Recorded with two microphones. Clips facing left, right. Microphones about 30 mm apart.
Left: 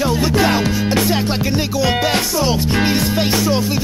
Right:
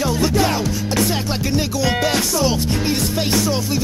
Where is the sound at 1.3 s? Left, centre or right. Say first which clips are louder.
Left 2 dB; centre.